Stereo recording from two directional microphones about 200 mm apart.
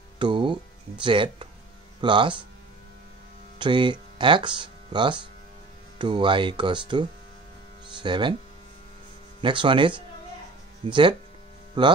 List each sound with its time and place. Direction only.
0.2 s music: 25° right (ahead or behind)
2.0 s speech: 25° right (ahead or behind)
3.5 s speech: 25° right (ahead or behind)
9.4 s speech: 25° right (ahead or behind)